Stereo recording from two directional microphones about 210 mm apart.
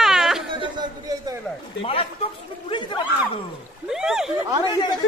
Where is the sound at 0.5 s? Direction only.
25° right (ahead or behind).